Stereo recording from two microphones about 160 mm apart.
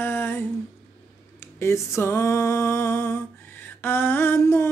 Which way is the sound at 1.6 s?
15° left (ahead or behind).